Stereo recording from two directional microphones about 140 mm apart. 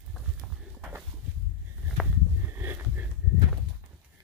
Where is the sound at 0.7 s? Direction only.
10° right (ahead or behind).